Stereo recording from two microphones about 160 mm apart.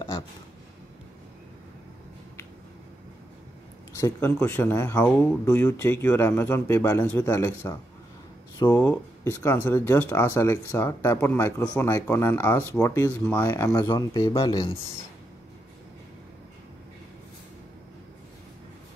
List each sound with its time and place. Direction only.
4.0 s speech: 15° left (ahead or behind); by 14.8 s 30° left (ahead or behind)